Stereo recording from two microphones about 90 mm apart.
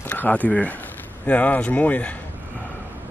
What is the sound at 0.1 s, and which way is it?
Speech, 15° left (ahead or behind).